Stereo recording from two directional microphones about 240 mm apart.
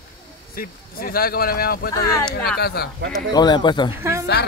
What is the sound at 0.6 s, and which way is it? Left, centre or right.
Speech, left.